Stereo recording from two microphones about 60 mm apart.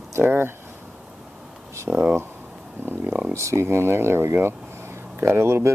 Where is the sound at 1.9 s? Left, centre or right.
Right.